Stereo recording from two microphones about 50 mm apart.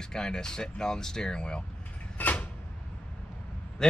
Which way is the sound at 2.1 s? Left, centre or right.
Left.